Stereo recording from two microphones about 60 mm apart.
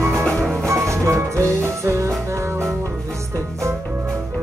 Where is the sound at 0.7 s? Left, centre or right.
Right.